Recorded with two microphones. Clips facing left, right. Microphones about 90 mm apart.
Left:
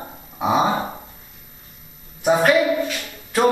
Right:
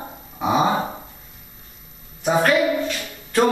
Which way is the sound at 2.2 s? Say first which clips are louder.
Left 2 dB; 10° left (ahead or behind).